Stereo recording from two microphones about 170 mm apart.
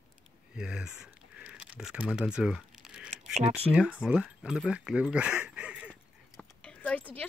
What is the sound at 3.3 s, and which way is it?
Speech, 40° right (ahead or behind).